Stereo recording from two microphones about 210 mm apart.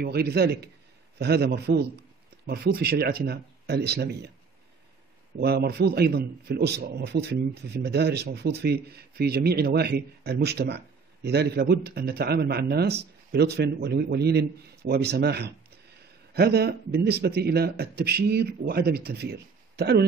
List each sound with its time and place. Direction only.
0.0 s a man's voice: 50° right (ahead or behind)
5.4 s a man's voice: 50° right (ahead or behind)